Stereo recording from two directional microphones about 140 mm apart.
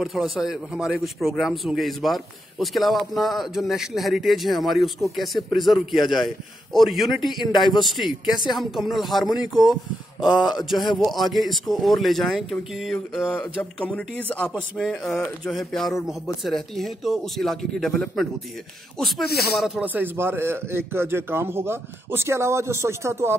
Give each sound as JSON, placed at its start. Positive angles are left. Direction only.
{"t": 0.0, "sound": "a man's voice", "side_deg": 0}
{"t": 13.6, "sound": "speech", "side_deg": 10}
{"t": 14.5, "sound": "a man's voice", "side_deg": 0}
{"t": 19.8, "sound": "a man's voice", "side_deg": -15}